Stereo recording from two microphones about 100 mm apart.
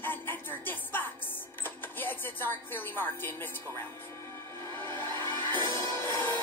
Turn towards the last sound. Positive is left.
turn(degrees=-45)  # may be behind; listen again after turning